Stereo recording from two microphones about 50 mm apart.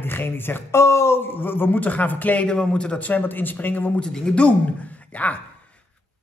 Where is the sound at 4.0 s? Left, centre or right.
Centre.